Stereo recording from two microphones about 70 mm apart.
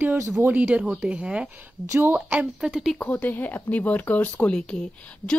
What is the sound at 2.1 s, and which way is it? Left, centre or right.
Speech, centre.